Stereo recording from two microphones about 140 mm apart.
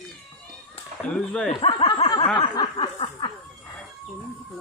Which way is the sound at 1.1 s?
5° left (ahead or behind).